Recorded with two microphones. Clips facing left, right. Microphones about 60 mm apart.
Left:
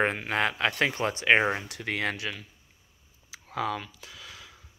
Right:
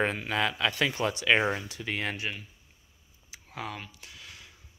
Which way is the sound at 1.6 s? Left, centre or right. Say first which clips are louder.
Left 3 dB; left.